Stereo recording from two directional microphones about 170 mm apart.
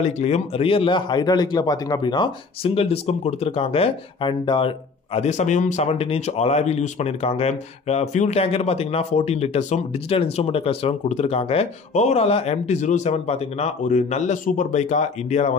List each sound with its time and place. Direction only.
0.0 s a man's voice: 40° left (ahead or behind)